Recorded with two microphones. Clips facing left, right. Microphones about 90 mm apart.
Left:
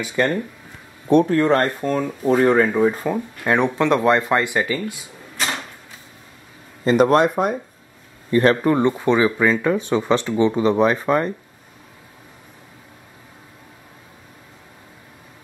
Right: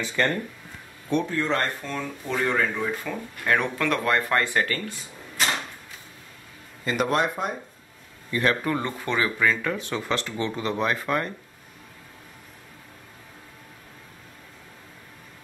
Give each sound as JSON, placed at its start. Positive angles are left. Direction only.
{"t": 0.0, "sound": "speech", "side_deg": 15}
{"t": 1.0, "sound": "speech", "side_deg": 50}
{"t": 3.4, "sound": "speech", "side_deg": 25}
{"t": 6.8, "sound": "speech", "side_deg": 30}
{"t": 8.3, "sound": "speech", "side_deg": 35}